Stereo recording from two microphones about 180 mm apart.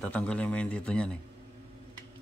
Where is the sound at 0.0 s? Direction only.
10° left (ahead or behind).